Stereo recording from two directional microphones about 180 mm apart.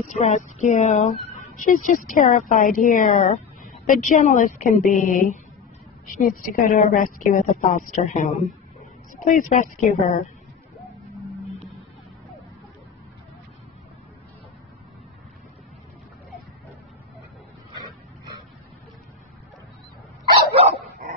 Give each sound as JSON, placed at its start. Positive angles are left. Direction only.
{"t": 0.1, "sound": "a woman's voice", "side_deg": 40}
{"t": 10.8, "sound": "music", "side_deg": 0}
{"t": 17.7, "sound": "pig", "side_deg": -25}
{"t": 20.3, "sound": "dog", "side_deg": -30}